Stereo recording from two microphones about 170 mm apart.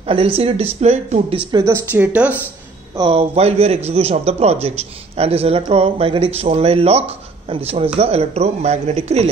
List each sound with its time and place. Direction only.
0.0 s a man's voice: 35° right (ahead or behind)
1.5 s speech: 20° right (ahead or behind)
2.0 s speech: 10° right (ahead or behind)
3.0 s a man's voice: 30° right (ahead or behind)